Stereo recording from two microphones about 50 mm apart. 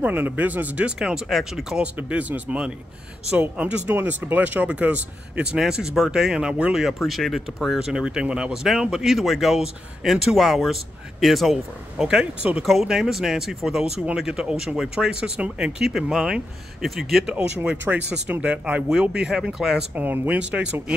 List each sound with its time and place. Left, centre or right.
0.0 s speech: right
0.9 s speech: centre
2.0 s speech: right
3.9 s speech: right
5.6 s speech: centre
7.1 s speech: centre
8.6 s speech: centre
12.2 s speech: right
12.8 s speech: centre
15.8 s speech: centre
17.9 s speech: right
18.9 s speech: centre
20.0 s speech: right
20.3 s speech: centre